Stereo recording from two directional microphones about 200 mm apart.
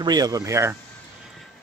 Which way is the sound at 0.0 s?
20° right (ahead or behind).